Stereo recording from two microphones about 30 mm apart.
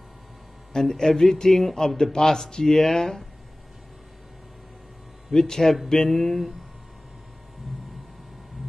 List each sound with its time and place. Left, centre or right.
0.7 s speech: centre
1.6 s speech: centre
2.1 s speech: centre
5.3 s speech: centre